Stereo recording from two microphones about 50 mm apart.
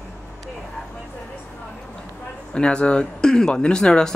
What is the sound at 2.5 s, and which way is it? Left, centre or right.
Speech, centre.